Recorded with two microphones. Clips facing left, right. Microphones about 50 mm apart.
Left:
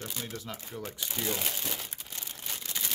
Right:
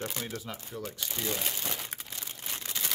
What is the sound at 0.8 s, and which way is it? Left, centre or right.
Speech, centre.